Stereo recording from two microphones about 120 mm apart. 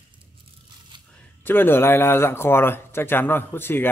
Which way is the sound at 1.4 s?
15° left (ahead or behind).